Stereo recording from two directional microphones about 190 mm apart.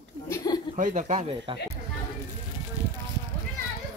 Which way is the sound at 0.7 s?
35° right (ahead or behind).